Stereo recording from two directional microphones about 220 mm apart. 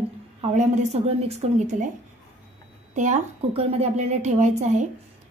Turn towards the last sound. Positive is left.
turn(degrees=-30)  # may be behind; listen again after turning